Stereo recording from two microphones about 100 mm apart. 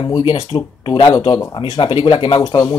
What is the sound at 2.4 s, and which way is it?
Speech, 35° left (ahead or behind).